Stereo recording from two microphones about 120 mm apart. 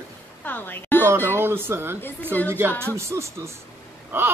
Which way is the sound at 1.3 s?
20° right (ahead or behind).